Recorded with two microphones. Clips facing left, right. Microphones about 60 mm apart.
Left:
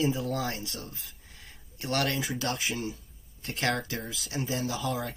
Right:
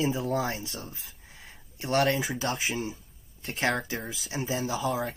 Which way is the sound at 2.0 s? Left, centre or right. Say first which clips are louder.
Right 5 dB; right.